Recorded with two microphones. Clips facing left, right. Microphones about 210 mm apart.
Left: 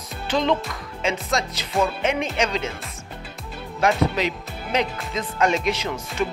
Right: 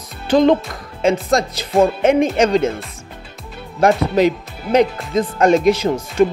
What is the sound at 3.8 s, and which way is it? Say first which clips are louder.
Speech: right 7 dB; 45° right (ahead or behind).